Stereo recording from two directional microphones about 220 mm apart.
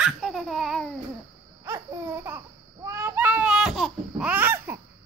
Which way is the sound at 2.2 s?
10° right (ahead or behind).